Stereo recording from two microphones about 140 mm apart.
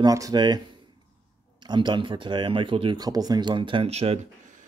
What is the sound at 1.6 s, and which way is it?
Speech, 35° right (ahead or behind).